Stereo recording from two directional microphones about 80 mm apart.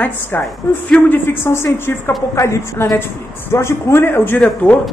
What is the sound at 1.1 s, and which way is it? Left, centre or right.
A woman's voice, left.